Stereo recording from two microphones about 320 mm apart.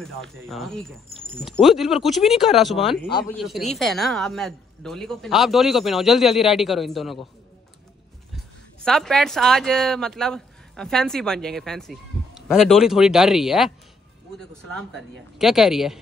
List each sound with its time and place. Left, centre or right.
0.0 s a man's voice: centre
2.9 s speech: centre
3.3 s a man's voice: centre
8.8 s a man's voice: centre